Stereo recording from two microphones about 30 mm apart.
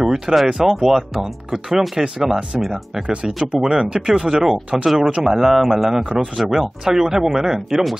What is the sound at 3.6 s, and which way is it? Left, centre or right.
Speech, right.